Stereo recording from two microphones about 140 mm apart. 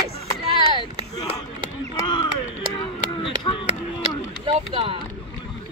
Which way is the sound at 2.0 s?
35° left (ahead or behind).